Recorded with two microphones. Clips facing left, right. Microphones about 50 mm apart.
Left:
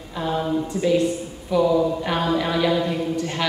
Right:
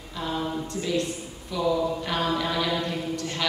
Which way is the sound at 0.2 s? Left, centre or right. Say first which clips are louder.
Left 6 dB; centre.